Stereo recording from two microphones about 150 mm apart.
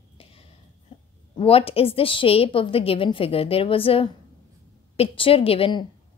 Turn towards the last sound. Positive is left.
turn(degrees=35)  # may be behind; listen again after turning